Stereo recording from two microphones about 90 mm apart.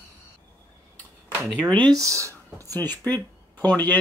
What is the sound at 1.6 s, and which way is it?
Speech, 55° right (ahead or behind).